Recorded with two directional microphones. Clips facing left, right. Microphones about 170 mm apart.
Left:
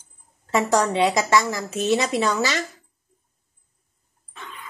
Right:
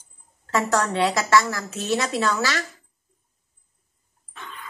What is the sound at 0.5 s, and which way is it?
A woman's voice, 20° left (ahead or behind).